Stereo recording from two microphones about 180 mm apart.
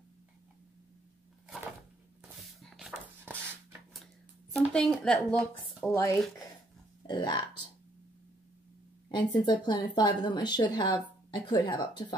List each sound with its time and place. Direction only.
2.6 s dog: centre (ahead or behind)
4.6 s speech: 5° left (ahead or behind)
7.1 s a woman's voice: 25° left (ahead or behind)
9.1 s a woman's voice: 25° left (ahead or behind)